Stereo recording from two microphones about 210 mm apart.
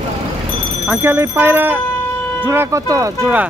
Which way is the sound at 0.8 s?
10° right (ahead or behind).